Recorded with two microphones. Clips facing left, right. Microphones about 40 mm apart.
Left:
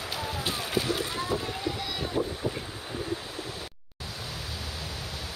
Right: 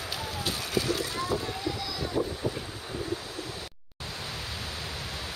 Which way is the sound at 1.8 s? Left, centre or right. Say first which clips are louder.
Left 1 dB; left.